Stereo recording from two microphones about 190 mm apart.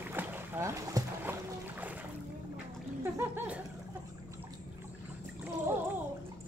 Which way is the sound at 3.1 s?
10° right (ahead or behind).